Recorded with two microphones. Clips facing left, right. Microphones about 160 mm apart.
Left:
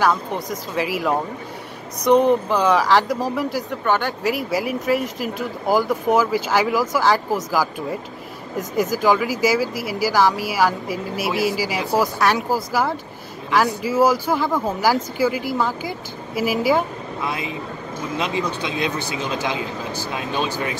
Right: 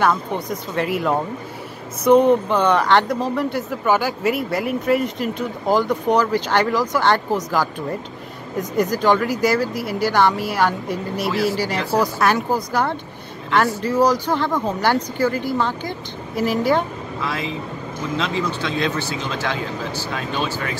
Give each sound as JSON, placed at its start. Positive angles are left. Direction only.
{"t": 0.0, "sound": "speech", "side_deg": 0}
{"t": 17.2, "sound": "speech", "side_deg": 20}